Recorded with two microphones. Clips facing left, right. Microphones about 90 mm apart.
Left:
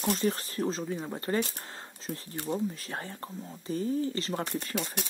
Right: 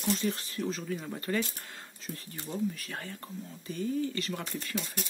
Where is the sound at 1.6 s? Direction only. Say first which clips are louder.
Left 3 dB; 30° left (ahead or behind).